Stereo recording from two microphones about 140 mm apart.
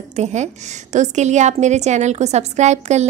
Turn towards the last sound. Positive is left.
turn(degrees=-55)  # may be behind; listen again after turning